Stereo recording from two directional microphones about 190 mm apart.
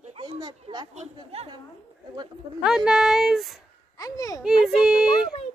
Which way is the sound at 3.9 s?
20° left (ahead or behind).